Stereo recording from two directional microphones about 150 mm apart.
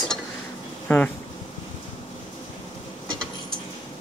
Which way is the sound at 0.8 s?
10° left (ahead or behind).